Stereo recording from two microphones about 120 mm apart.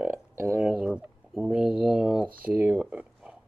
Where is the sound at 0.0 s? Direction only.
20° right (ahead or behind).